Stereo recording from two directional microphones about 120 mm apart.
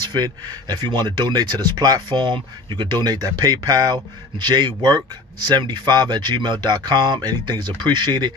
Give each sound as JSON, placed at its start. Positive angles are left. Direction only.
{"t": 0.1, "sound": "speech", "side_deg": -35}